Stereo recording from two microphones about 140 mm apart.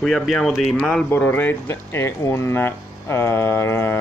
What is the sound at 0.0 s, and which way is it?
Speech, centre (ahead or behind).